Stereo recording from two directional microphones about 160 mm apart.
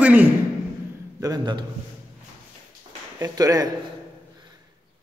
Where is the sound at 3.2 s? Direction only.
20° right (ahead or behind).